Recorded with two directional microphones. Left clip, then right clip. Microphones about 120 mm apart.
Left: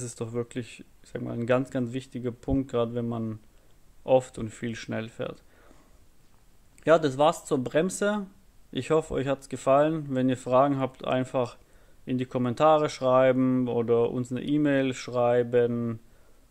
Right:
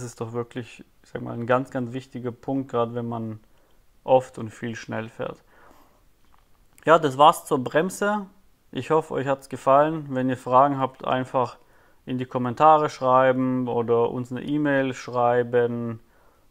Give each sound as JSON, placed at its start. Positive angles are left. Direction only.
{"t": 0.0, "sound": "speech", "side_deg": 20}
{"t": 1.1, "sound": "speech", "side_deg": 30}
{"t": 2.1, "sound": "speech", "side_deg": 35}
{"t": 2.6, "sound": "speech", "side_deg": 25}
{"t": 4.6, "sound": "speech", "side_deg": 20}
{"t": 6.8, "sound": "speech", "side_deg": 35}
{"t": 7.8, "sound": "speech", "side_deg": 15}
{"t": 9.7, "sound": "speech", "side_deg": 30}
{"t": 10.3, "sound": "speech", "side_deg": 20}
{"t": 13.4, "sound": "speech", "side_deg": 35}